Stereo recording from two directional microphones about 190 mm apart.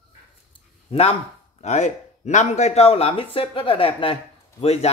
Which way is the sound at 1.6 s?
35° left (ahead or behind).